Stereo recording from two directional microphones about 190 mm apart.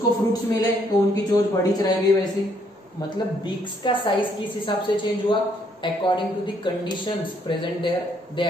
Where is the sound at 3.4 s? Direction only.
25° left (ahead or behind).